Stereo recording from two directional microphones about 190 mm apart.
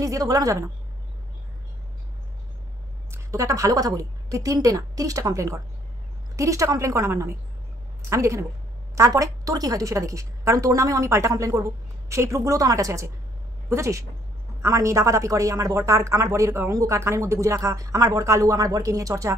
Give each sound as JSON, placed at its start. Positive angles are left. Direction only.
{"t": 0.0, "sound": "speech", "side_deg": -15}
{"t": 3.1, "sound": "speech", "side_deg": -15}